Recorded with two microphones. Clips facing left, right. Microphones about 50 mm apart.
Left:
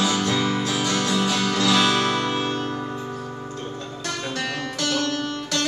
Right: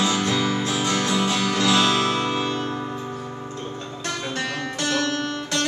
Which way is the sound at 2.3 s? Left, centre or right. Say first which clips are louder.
Even; left.